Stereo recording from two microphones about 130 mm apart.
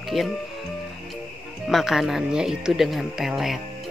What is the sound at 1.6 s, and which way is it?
Speech, centre (ahead or behind).